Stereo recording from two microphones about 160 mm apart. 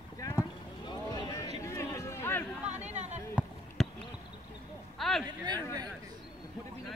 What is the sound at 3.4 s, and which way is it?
Basketball bounce, 10° right (ahead or behind).